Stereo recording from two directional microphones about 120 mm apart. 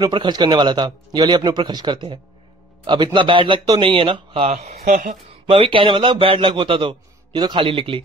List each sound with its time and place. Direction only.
0.1 s a man's voice: 40° right (ahead or behind)
4.5 s speech: 80° right
5.5 s a man's voice: 50° right (ahead or behind)